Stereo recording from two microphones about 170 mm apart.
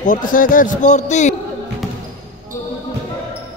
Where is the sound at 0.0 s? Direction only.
50° left (ahead or behind).